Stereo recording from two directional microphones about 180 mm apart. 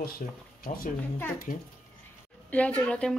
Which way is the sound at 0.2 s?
45° left (ahead or behind).